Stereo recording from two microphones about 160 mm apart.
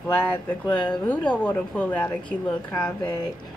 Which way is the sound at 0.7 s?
10° left (ahead or behind).